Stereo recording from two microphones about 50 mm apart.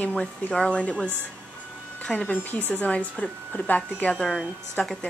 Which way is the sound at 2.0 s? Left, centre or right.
Left.